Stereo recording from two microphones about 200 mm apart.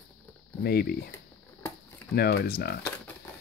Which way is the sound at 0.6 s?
50° left (ahead or behind).